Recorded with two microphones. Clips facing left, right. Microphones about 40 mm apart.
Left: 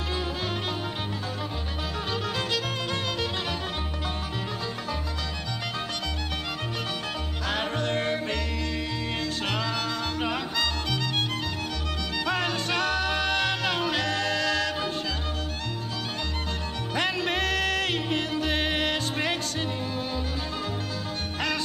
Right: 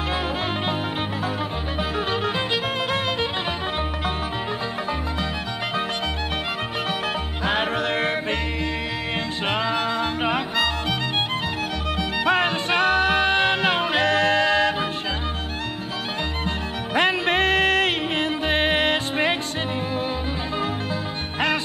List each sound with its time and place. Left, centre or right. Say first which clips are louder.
2.0 s music: right 5 dB; right
7.4 s music: right 6 dB; right
7.8 s music: right 4 dB; centre
9.5 s music: right 9 dB; right
12.3 s music: right 7 dB; right
16.9 s music: right 7 dB; right